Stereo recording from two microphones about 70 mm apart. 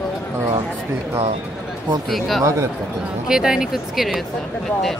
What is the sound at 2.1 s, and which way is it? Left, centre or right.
Speech, centre.